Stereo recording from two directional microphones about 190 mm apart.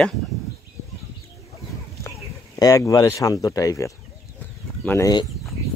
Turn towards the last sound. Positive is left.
turn(degrees=15)  # may be behind; listen again after turning